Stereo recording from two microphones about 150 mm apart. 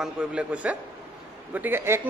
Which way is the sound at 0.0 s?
5° right (ahead or behind).